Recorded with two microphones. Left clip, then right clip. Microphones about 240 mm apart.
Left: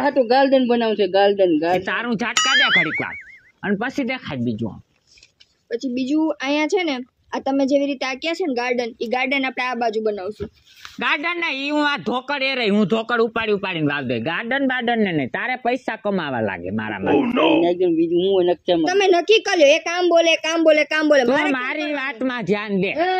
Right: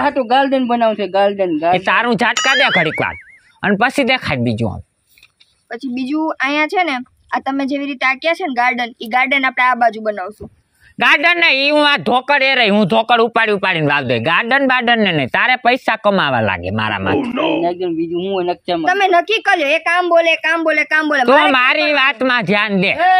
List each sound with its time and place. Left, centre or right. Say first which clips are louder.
0.0 s a woman's voice: right 2 dB; right
1.7 s a man's voice: right 8 dB; right
5.7 s speech: right 1 dB; right
11.0 s a man's voice: right 10 dB; right
17.1 s speech: left 4 dB; centre
17.6 s a woman's voice: even; right
21.3 s a man's voice: right 9 dB; right